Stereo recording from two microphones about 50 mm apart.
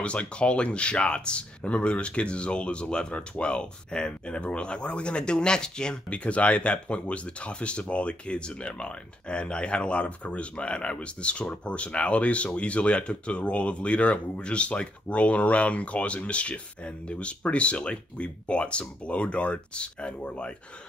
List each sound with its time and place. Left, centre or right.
0.0 s speech: left